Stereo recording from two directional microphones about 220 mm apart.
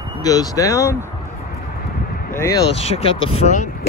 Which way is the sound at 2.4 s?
15° left (ahead or behind).